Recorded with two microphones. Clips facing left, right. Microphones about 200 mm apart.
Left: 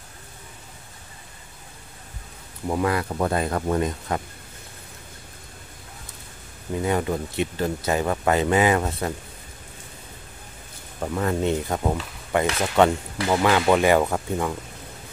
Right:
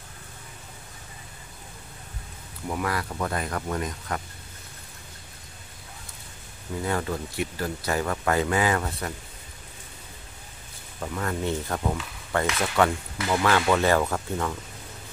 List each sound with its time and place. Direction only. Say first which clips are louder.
2.7 s speech: left 6 dB; 25° left (ahead or behind)
6.8 s speech: left 4 dB; 20° left (ahead or behind)
11.0 s speech: left 5 dB; 25° left (ahead or behind)